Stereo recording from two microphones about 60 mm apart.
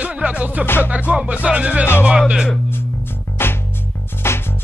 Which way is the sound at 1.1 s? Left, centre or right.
Centre.